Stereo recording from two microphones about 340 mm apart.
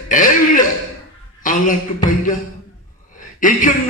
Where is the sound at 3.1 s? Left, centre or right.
Left.